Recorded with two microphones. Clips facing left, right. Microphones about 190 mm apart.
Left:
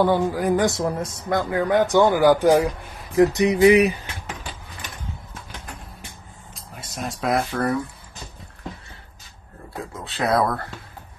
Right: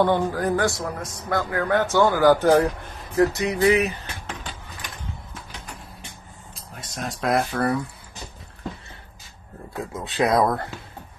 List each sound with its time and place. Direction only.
0.0 s speech: 10° left (ahead or behind)
6.5 s speech: centre (ahead or behind)
10.0 s speech: 15° right (ahead or behind)